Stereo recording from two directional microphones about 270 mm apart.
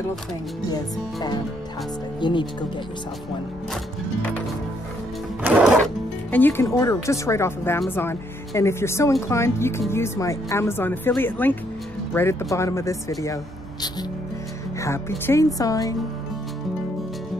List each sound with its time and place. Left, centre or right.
0.7 s speech: centre
5.4 s sewing machine: centre
6.3 s speech: centre
14.8 s speech: centre